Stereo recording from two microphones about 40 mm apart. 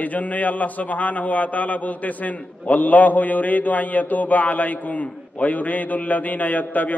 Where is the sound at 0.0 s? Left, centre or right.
Left.